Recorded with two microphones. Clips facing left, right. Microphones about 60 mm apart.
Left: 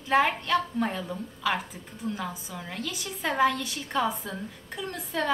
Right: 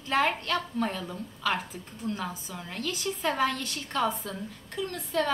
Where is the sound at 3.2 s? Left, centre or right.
Left.